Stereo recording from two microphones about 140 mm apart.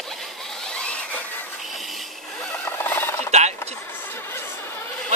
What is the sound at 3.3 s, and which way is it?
Vehicle, 55° right (ahead or behind).